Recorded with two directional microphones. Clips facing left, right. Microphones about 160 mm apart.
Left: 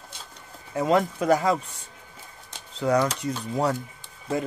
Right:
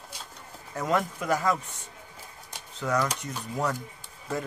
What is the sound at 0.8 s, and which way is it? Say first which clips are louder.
Speech: left 5 dB; 30° left (ahead or behind).